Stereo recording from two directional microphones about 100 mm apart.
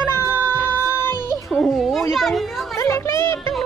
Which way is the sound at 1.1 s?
45° right (ahead or behind).